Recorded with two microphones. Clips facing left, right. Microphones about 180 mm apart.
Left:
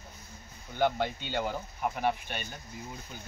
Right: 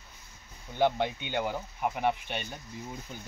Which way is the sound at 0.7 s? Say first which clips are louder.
Right 2 dB; 20° right (ahead or behind).